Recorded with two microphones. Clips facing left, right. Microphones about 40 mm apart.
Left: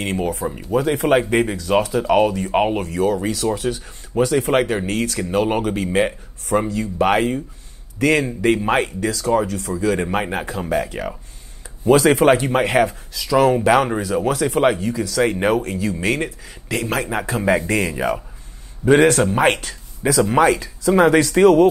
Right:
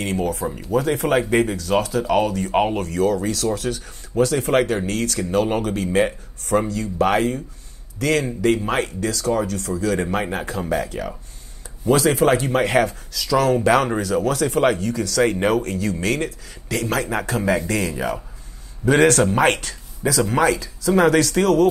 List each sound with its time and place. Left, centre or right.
0.0 s speech: left
0.9 s speech: left
1.3 s speech: left
12.4 s speech: left
17.6 s speech: left
19.4 s speech: centre
20.0 s speech: left
20.9 s speech: left